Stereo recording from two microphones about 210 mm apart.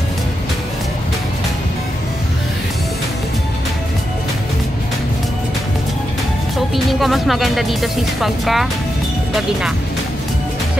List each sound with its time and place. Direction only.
6.7 s speech: centre (ahead or behind)